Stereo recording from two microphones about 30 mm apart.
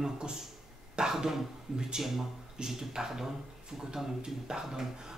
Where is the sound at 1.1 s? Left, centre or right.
Centre.